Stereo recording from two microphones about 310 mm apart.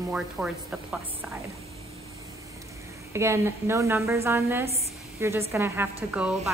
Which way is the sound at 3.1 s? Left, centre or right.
Centre.